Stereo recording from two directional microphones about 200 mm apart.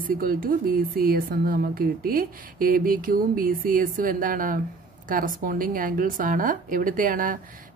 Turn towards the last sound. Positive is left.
turn(degrees=-45)  # may be behind; listen again after turning